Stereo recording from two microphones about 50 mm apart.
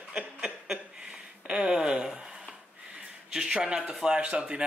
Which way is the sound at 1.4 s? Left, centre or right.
Centre.